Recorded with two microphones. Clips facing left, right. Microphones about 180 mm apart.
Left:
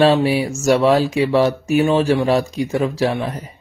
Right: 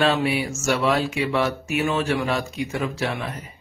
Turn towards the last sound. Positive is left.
turn(degrees=35)  # may be behind; listen again after turning